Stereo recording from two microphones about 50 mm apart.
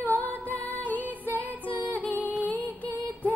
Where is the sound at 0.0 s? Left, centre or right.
Left.